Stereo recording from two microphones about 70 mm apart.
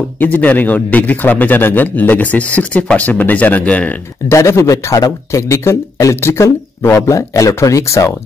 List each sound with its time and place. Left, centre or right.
0.2 s a man's voice: left
4.3 s speech: left